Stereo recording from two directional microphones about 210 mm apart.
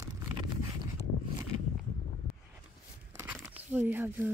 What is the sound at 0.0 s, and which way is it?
Zipper, 15° right (ahead or behind).